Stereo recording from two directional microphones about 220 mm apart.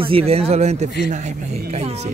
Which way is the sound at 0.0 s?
25° right (ahead or behind).